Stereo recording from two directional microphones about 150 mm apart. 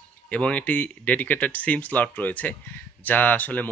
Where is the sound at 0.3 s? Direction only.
10° left (ahead or behind).